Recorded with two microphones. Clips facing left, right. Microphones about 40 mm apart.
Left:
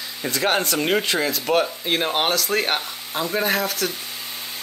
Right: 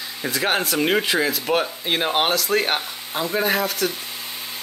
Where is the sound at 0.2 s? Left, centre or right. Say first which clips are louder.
Even; centre.